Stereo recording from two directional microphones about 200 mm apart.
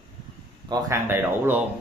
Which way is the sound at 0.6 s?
20° right (ahead or behind).